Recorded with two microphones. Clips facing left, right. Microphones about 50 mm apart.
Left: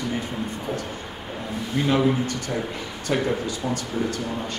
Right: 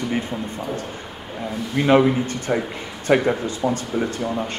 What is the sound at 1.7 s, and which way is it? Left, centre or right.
Speech, right.